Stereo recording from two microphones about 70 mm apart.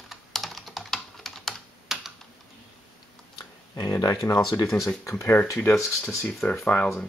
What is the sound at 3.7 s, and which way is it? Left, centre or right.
Speech, left.